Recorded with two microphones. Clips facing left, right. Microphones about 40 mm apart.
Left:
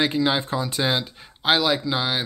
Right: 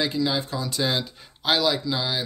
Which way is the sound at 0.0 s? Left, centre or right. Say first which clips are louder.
Left 3 dB; left.